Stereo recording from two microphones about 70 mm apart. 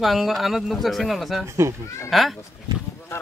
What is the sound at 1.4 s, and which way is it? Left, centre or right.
Speech, right.